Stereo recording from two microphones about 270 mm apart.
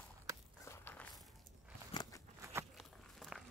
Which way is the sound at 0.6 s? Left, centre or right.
Centre.